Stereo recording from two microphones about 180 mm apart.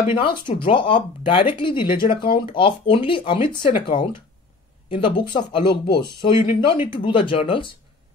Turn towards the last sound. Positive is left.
turn(degrees=30)  # may be behind; listen again after turning